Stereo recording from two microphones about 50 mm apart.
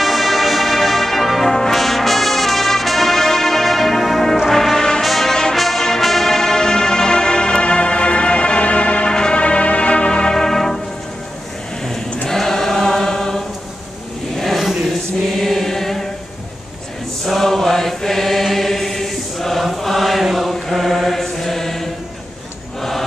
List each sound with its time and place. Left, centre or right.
0.0 s brass instrument: centre
5.6 s music: centre
10.3 s music: centre
12.3 s choir: centre
14.4 s choir: centre
17.3 s chant: centre
22.8 s music: centre